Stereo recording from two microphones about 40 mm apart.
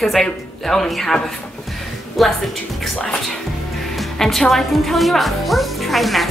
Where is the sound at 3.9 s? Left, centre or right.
Centre.